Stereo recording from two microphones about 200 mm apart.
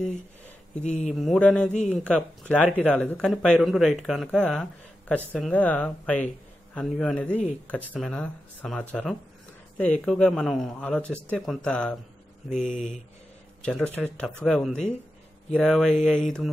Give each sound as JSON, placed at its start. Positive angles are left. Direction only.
{"t": 0.8, "sound": "speech", "side_deg": 35}
{"t": 1.2, "sound": "speech", "side_deg": 0}
{"t": 12.4, "sound": "speech", "side_deg": 35}
{"t": 13.6, "sound": "speech", "side_deg": 5}